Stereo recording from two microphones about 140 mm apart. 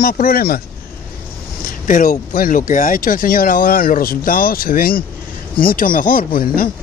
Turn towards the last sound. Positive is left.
turn(degrees=85)